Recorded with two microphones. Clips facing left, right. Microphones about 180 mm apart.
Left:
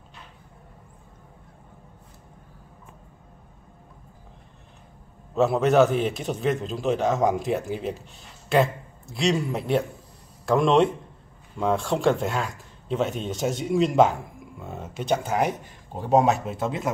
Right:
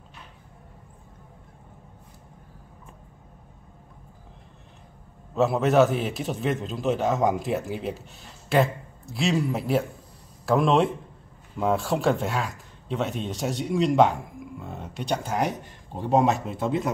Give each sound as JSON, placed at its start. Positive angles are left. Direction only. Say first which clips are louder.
{"t": 5.3, "sound": "a man's voice", "louder": "left 1 dB", "side_deg": 0}